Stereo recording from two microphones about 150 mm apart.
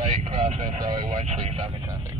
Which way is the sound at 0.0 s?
50° right (ahead or behind).